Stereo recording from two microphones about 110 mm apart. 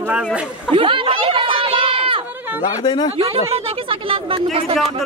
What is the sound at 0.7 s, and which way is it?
Chatter, 50° right (ahead or behind).